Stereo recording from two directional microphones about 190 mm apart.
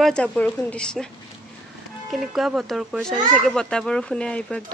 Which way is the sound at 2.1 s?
Centre (ahead or behind).